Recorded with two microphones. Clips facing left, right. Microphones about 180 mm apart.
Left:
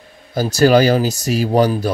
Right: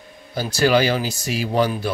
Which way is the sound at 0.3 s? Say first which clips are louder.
Left 5 dB; 45° left (ahead or behind).